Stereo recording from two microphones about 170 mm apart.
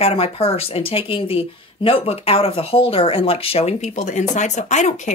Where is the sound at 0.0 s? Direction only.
35° left (ahead or behind).